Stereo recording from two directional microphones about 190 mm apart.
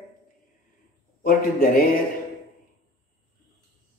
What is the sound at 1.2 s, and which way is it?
Speech, 50° left (ahead or behind).